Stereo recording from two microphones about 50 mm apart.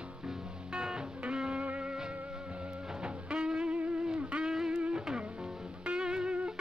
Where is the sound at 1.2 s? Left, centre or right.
Centre.